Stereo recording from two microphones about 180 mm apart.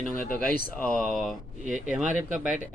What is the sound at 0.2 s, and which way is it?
Speech, 50° left (ahead or behind).